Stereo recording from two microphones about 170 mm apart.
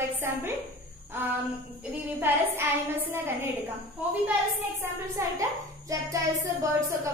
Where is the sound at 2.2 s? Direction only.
15° right (ahead or behind).